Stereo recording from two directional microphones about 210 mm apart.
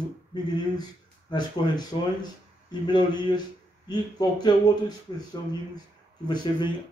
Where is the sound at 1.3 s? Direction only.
20° left (ahead or behind).